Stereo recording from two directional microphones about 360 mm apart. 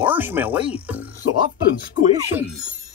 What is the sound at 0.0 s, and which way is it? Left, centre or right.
A woman's voice, centre.